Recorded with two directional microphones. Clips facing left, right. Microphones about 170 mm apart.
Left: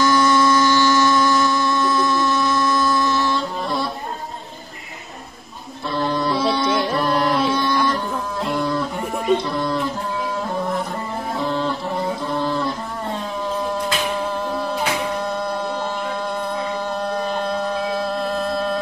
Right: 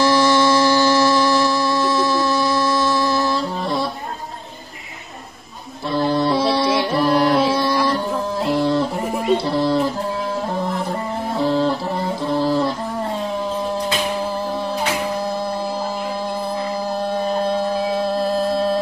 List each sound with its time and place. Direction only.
0.0 s mantra: 30° right (ahead or behind)
2.0 s music: 30° right (ahead or behind)
3.3 s music: centre (ahead or behind)
6.2 s music: centre (ahead or behind)
7.3 s music: 30° right (ahead or behind)
8.5 s a sound: 30° right (ahead or behind)
11.3 s music: 35° right (ahead or behind)
14.5 s music: centre (ahead or behind)
15.7 s music: 30° right (ahead or behind)